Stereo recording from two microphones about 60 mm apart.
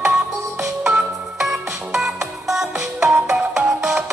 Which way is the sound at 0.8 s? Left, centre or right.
Centre.